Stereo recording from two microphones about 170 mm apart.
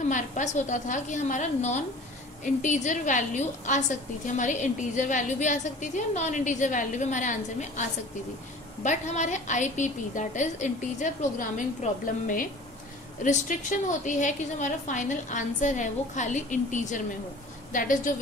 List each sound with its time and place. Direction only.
0.0 s a woman's voice: 45° left (ahead or behind)
8.8 s a woman's voice: 45° left (ahead or behind)